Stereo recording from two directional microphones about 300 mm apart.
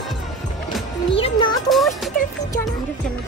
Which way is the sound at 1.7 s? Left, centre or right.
Centre.